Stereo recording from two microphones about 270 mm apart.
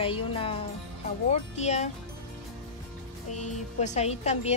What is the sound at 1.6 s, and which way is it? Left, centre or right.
Speech, left.